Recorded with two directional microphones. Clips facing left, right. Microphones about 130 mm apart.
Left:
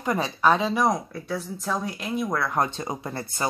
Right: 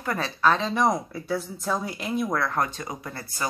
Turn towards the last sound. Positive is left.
turn(degrees=25)  # may be behind; listen again after turning